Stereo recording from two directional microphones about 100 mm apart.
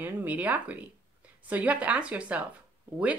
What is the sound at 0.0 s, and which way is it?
Speech, 15° right (ahead or behind).